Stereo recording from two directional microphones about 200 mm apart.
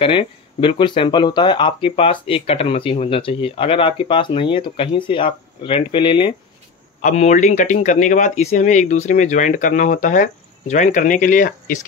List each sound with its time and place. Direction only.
0.0 s speech: 25° left (ahead or behind)
7.0 s speech: 35° left (ahead or behind)